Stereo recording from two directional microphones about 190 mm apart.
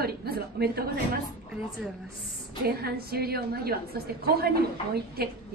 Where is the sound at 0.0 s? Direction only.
55° right (ahead or behind).